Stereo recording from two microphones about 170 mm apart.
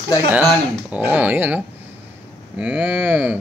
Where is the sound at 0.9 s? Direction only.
10° right (ahead or behind).